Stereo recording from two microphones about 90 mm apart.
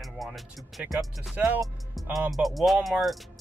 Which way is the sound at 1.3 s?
15° right (ahead or behind).